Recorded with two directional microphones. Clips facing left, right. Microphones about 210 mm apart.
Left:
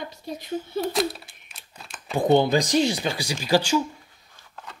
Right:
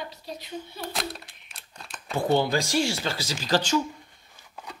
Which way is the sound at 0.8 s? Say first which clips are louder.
Left 8 dB; 5° left (ahead or behind).